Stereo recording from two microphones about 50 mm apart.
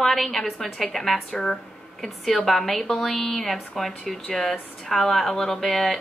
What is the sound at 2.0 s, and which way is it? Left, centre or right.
A woman's voice, centre.